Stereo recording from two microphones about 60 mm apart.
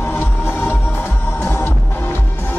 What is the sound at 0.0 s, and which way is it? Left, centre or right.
Music, left.